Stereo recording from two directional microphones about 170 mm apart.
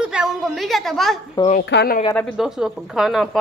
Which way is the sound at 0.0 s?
5° right (ahead or behind).